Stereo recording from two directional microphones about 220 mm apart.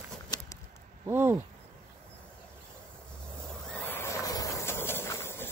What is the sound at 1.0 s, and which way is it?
Speech, 10° right (ahead or behind).